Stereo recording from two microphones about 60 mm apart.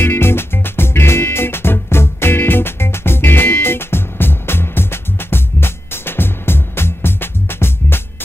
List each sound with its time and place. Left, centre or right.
0.0 s music: left